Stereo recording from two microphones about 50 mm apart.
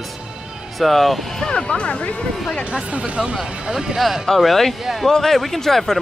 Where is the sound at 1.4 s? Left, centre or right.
Centre.